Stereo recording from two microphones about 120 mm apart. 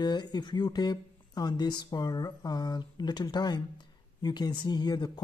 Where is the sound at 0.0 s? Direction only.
35° left (ahead or behind).